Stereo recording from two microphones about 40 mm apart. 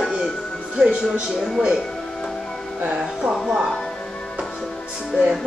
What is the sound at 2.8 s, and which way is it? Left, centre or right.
Speech, right.